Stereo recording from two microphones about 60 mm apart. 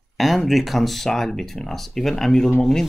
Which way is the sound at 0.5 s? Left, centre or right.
Centre.